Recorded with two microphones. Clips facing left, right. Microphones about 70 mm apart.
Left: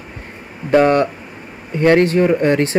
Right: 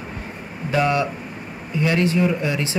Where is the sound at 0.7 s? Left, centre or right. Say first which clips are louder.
Left 7 dB; left.